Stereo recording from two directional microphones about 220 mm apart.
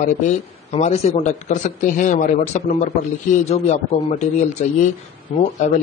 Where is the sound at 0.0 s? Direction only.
30° left (ahead or behind).